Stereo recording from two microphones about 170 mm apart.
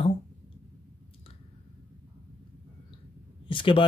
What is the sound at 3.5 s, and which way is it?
Speech, 30° left (ahead or behind).